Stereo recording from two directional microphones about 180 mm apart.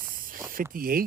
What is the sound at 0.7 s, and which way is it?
Speech, 55° right (ahead or behind).